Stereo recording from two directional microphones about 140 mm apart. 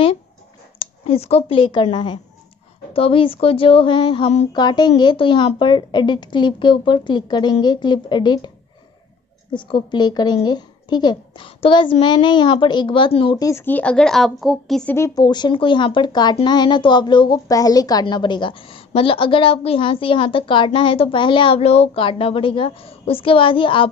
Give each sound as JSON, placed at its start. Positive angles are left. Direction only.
{"t": 0.7, "sound": "a woman's voice", "side_deg": 45}
{"t": 9.5, "sound": "a woman's voice", "side_deg": 35}
{"t": 13.4, "sound": "speech", "side_deg": 20}
{"t": 15.0, "sound": "a woman's voice", "side_deg": 25}